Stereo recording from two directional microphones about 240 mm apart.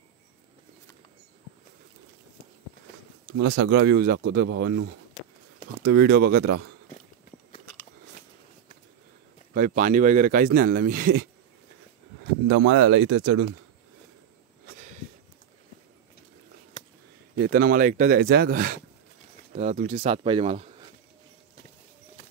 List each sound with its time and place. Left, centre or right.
3.4 s speech: right
6.9 s walk: left
9.5 s speech: right
12.4 s speech: right
16.8 s a sound: left
17.4 s speech: right